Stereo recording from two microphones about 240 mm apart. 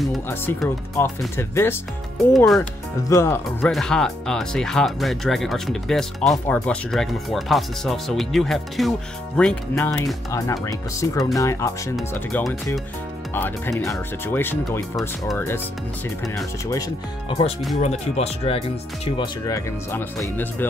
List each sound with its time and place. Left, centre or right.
0.0 s speech: centre
3.0 s speech: centre
3.4 s speech: centre
17.3 s speech: left
19.1 s speech: centre